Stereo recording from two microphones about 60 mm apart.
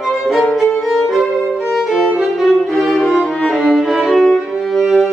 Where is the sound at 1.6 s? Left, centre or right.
Centre.